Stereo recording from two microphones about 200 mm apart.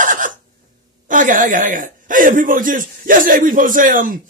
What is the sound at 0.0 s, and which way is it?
Cough, 40° right (ahead or behind).